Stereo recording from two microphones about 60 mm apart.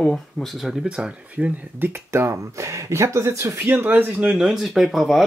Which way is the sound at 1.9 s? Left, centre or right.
Right.